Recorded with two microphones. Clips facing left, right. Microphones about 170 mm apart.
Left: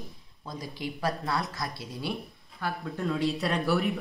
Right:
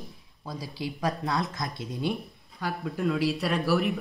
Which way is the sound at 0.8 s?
15° right (ahead or behind).